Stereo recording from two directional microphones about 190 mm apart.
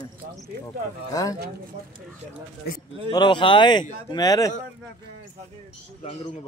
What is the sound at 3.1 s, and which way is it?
A man's voice, 25° left (ahead or behind).